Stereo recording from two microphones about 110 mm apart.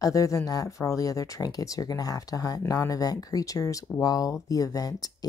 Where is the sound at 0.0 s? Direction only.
30° left (ahead or behind).